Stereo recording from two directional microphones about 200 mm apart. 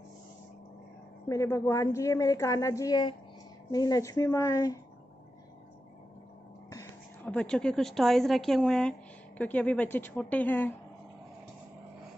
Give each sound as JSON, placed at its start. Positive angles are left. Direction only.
{"t": 1.3, "sound": "a woman's voice", "side_deg": 15}
{"t": 6.7, "sound": "a woman's voice", "side_deg": 10}